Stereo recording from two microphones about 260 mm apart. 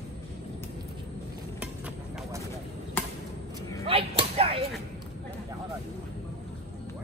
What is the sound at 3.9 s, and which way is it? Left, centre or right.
Whip, right.